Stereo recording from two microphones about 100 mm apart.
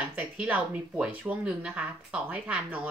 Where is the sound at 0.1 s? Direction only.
15° right (ahead or behind).